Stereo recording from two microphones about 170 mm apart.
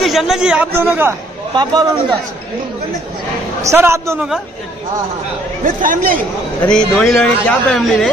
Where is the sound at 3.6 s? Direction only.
15° right (ahead or behind).